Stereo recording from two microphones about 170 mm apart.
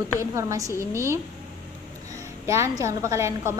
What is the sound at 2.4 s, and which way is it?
A woman's voice, 15° right (ahead or behind).